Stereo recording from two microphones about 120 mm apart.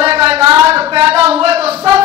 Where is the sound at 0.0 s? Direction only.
55° right (ahead or behind).